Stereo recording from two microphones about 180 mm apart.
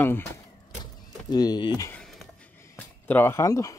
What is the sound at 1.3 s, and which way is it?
Speech, 20° left (ahead or behind).